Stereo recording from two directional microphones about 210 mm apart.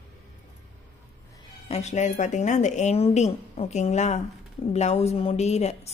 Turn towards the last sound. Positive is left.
turn(degrees=30)  # may be behind; listen again after turning